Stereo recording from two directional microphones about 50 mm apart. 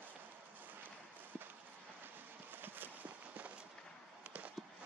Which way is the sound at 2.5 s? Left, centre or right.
Right.